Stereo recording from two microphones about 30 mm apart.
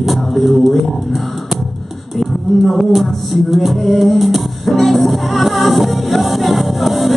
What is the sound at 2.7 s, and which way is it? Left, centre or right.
Music, centre.